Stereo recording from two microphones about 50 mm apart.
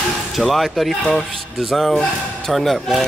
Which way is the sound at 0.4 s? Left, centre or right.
Centre.